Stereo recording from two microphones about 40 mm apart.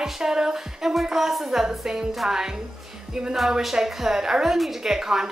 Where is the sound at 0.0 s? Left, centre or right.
Centre.